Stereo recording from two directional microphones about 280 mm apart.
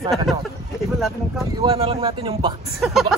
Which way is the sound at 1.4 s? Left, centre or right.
Centre.